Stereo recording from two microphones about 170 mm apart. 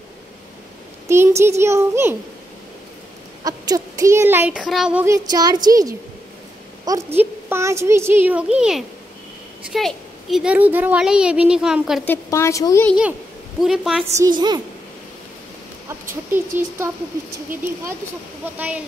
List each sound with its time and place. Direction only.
1.0 s a sound: 15° right (ahead or behind)
1.6 s speech: 15° right (ahead or behind)
3.4 s speech: 20° right (ahead or behind); by 5.0 s 5° right (ahead or behind)
5.0 s a woman's voice: 20° right (ahead or behind); by 12.1 s 5° right (ahead or behind)
12.1 s a woman's voice: 15° left (ahead or behind)
13.6 s a woman's voice: centre (ahead or behind)
14.1 s a woman's voice: 20° right (ahead or behind)
16.5 s speech: 15° right (ahead or behind)
18.4 s speech: 10° right (ahead or behind)